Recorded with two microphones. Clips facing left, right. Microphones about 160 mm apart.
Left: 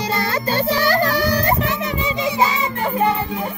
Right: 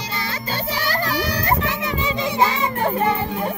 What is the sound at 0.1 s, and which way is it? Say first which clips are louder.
Music: left 6 dB; 50° left (ahead or behind).